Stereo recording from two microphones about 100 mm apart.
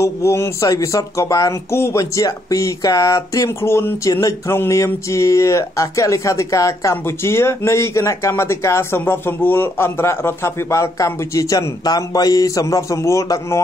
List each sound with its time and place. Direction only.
0.0 s speech: 30° left (ahead or behind)